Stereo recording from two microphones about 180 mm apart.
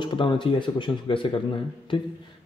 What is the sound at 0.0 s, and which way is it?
A man's voice, 25° left (ahead or behind).